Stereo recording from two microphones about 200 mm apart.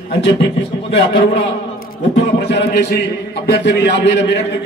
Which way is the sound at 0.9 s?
60° left (ahead or behind).